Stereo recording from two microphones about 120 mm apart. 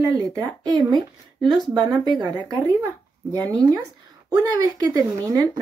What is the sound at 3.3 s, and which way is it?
Speech, 30° right (ahead or behind).